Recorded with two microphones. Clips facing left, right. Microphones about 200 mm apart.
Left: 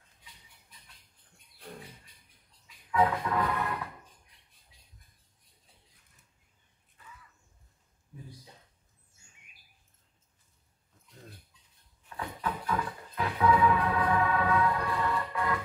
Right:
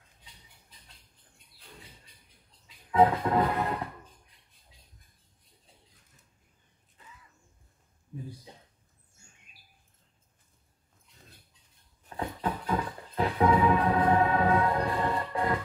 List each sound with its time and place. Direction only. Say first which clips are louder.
2.9 s music: right 4 dB; 30° right (ahead or behind)
7.0 s a sound: left 1 dB; 20° right (ahead or behind)
12.0 s music: right 4 dB; 35° right (ahead or behind)